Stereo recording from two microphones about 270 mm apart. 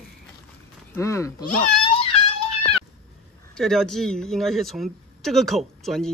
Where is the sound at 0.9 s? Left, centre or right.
Centre.